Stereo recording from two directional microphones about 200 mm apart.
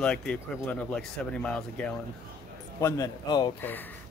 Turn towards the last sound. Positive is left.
turn(degrees=10)  # may be behind; listen again after turning